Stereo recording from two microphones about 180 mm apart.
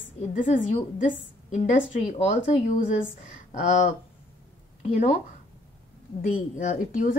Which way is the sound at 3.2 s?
40° left (ahead or behind).